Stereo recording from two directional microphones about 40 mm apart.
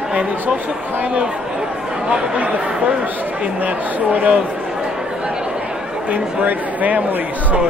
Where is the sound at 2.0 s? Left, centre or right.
Right.